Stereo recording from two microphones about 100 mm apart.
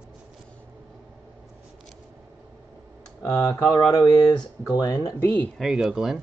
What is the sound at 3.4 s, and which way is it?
Speech, 35° left (ahead or behind).